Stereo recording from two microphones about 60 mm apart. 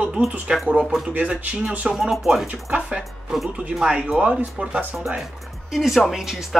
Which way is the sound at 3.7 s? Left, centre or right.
Centre.